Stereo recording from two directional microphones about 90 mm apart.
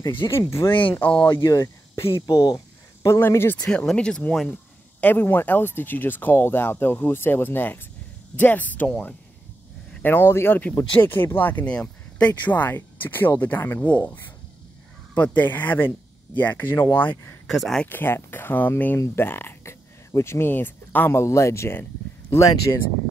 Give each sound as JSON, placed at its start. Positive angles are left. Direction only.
{"t": 0.4, "sound": "speech", "side_deg": 35}
{"t": 0.7, "sound": "speech", "side_deg": 70}
{"t": 0.9, "sound": "speech", "side_deg": 20}
{"t": 1.3, "sound": "speech", "side_deg": 40}
{"t": 2.2, "sound": "a sound", "side_deg": 45}
{"t": 3.2, "sound": "speech", "side_deg": 25}
{"t": 3.6, "sound": "speech", "side_deg": 10}
{"t": 5.0, "sound": "speech", "side_deg": 25}
{"t": 17.5, "sound": "speech", "side_deg": 5}
{"t": 17.8, "sound": "speech", "side_deg": 25}